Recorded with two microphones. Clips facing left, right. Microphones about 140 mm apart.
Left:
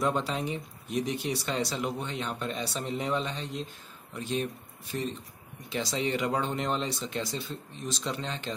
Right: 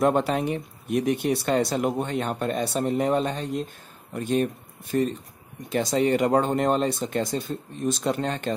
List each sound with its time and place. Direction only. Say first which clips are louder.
0.0 s speech: right 7 dB; 60° right (ahead or behind)